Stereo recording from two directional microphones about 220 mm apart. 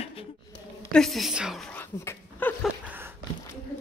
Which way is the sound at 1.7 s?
10° left (ahead or behind).